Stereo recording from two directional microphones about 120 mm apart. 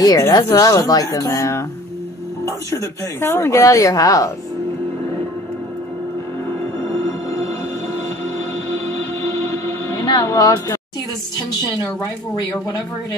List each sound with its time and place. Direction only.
0.0 s speech: 30° left (ahead or behind)
8.6 s music: 20° left (ahead or behind)
10.0 s speech: 30° left (ahead or behind)